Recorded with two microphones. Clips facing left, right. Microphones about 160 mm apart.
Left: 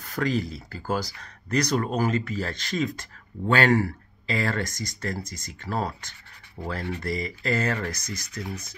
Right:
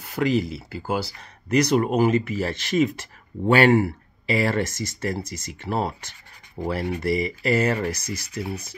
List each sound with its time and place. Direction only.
0.0 s speech: 15° right (ahead or behind)